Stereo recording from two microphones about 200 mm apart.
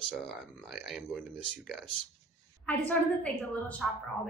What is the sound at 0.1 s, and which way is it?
Speech, centre (ahead or behind).